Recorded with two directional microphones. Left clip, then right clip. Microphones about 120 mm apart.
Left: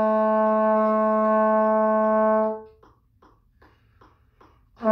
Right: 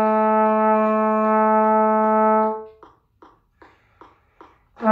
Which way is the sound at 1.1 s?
15° right (ahead or behind).